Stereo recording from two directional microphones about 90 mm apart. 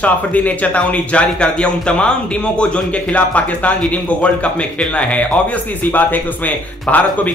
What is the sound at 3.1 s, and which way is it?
Speech, 15° left (ahead or behind).